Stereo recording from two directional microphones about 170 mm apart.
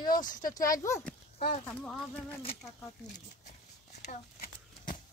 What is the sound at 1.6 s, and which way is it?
Speech, 5° left (ahead or behind).